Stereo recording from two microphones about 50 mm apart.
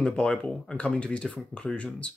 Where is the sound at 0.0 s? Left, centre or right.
Left.